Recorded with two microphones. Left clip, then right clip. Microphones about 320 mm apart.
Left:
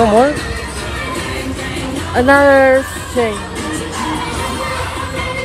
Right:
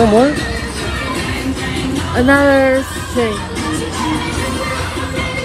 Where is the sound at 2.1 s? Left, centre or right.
Left.